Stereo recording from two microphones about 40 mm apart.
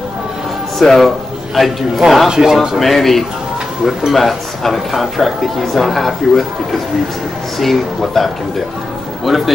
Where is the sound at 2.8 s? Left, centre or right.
Centre.